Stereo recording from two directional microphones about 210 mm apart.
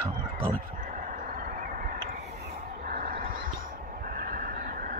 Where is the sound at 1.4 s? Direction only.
40° right (ahead or behind).